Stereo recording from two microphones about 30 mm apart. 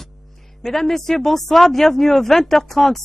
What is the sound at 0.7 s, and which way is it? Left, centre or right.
Speech, centre.